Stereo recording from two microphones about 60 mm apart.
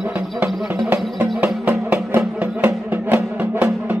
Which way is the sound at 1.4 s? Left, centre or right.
Right.